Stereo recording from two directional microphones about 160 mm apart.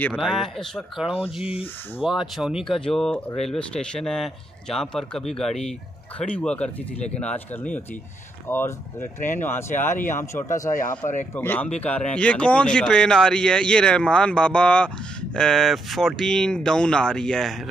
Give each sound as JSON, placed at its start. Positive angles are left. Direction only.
{"t": 0.3, "sound": "speech", "side_deg": 0}
{"t": 1.5, "sound": "speech", "side_deg": 35}
{"t": 2.0, "sound": "speech", "side_deg": 0}
{"t": 10.7, "sound": "speech", "side_deg": 55}
{"t": 11.3, "sound": "speech", "side_deg": 10}